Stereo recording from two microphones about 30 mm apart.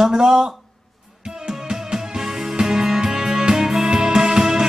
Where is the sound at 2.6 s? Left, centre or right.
Centre.